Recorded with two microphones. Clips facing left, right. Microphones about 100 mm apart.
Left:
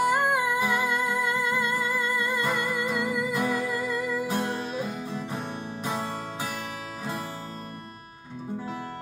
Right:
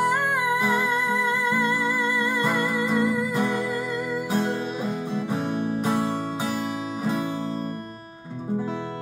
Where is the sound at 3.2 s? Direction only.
30° right (ahead or behind).